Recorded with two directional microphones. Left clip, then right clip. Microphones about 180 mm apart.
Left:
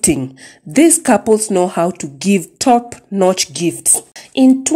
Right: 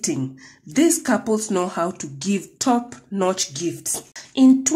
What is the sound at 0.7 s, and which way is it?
A woman's voice, 40° left (ahead or behind).